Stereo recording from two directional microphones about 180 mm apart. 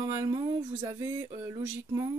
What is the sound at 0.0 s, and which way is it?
Speech, 20° right (ahead or behind).